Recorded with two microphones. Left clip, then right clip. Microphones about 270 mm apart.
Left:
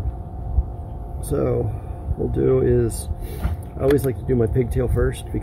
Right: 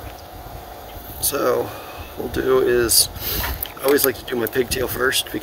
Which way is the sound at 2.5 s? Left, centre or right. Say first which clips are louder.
Right 5 dB; centre.